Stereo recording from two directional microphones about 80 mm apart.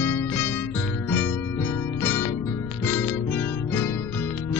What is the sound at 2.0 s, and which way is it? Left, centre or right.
Music, left.